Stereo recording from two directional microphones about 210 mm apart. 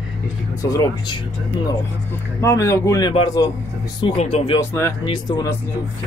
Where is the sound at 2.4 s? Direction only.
15° left (ahead or behind).